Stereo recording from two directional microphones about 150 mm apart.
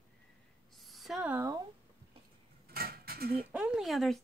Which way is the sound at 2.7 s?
90° right.